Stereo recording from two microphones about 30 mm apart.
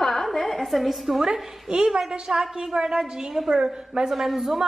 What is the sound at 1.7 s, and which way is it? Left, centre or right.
A woman's voice, right.